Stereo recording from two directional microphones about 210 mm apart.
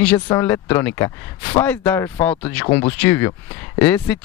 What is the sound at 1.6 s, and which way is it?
Speech, 5° left (ahead or behind).